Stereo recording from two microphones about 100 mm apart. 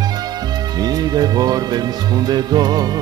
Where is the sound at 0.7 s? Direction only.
40° right (ahead or behind).